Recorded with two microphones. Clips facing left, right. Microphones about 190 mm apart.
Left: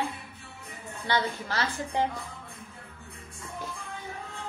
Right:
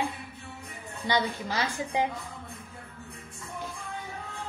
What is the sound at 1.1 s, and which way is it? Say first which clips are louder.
A woman's voice: right 1 dB; 15° right (ahead or behind).